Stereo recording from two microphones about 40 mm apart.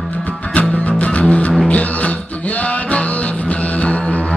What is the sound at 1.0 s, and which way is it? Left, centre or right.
Music, left.